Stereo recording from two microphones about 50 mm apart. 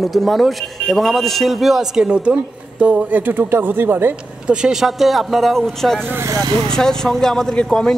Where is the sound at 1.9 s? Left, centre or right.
Centre; by 4.2 s right.